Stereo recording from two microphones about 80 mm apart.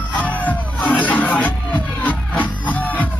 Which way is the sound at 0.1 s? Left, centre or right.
Centre.